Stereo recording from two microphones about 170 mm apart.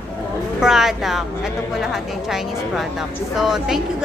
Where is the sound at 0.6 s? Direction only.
5° right (ahead or behind).